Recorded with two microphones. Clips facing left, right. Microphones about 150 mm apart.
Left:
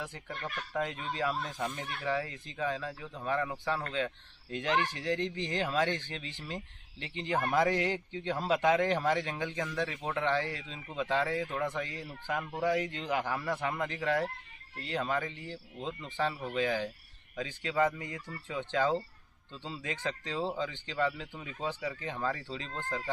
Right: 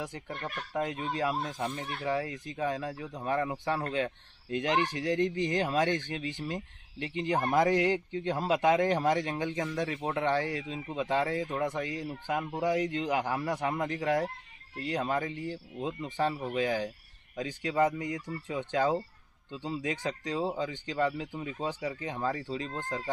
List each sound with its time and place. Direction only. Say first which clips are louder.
0.0 s speech: right 3 dB; 15° right (ahead or behind)
1.6 s speech: right 2 dB; 30° right (ahead or behind)
2.0 s speech: right 2 dB; 10° right (ahead or behind)